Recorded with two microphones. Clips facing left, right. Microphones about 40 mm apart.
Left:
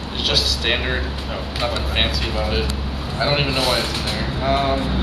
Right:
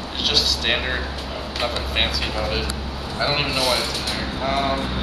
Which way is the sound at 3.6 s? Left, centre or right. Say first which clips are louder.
Left 1 dB; left.